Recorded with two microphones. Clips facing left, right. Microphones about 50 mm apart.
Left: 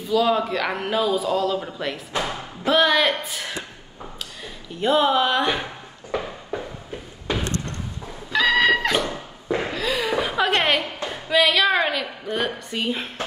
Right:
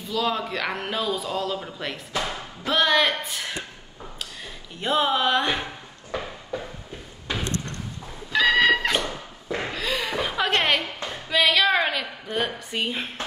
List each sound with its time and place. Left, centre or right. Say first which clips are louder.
0.1 s a woman's voice: left 6 dB; centre
4.7 s a woman's voice: left 4 dB; centre
8.3 s cat: left 1 dB; centre
9.7 s a sound: left 4 dB; centre
11.2 s a woman's voice: left 2 dB; centre